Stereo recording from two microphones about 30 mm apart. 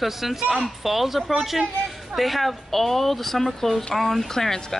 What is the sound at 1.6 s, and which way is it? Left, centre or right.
Speech, centre.